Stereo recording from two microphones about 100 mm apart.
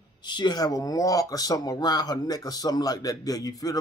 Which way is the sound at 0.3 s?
45° left (ahead or behind).